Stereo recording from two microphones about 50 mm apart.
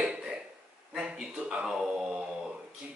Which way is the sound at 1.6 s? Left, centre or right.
Centre.